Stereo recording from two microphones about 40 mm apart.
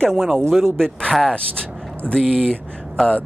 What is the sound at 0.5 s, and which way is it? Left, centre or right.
Speech, centre.